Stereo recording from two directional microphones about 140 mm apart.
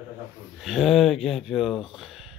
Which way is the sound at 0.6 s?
Centre (ahead or behind).